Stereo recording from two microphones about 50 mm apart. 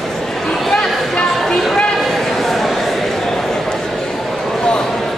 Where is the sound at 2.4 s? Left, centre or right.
Centre.